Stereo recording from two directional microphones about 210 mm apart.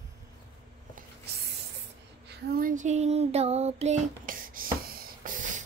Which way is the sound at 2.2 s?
50° right (ahead or behind).